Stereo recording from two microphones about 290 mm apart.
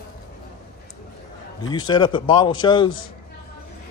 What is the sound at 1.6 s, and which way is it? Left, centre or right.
A man's voice, centre.